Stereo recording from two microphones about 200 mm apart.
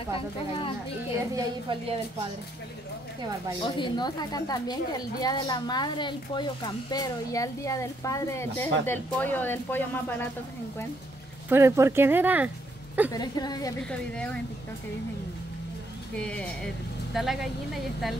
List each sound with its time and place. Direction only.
1.3 s a woman's voice: 25° right (ahead or behind)
3.6 s a woman's voice: 25° left (ahead or behind)
11.4 s speech: 15° right (ahead or behind)
13.1 s a woman's voice: 20° left (ahead or behind)
13.8 s speech: 5° left (ahead or behind)
16.2 s speech: 5° left (ahead or behind)